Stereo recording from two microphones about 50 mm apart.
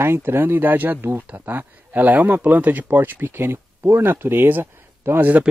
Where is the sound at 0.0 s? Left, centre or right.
Right.